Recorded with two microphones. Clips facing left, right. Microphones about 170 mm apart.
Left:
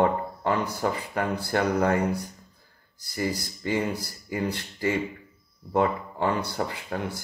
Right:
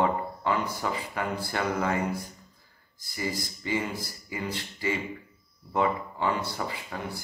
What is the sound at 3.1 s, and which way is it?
Speech, 55° left (ahead or behind).